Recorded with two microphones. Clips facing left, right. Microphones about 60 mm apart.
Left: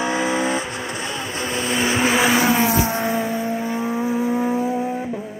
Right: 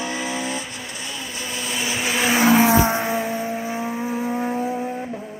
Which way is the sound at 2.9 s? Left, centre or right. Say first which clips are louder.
Left 1 dB; centre.